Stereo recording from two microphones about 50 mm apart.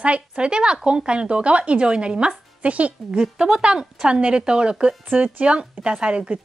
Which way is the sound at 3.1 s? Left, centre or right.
Centre.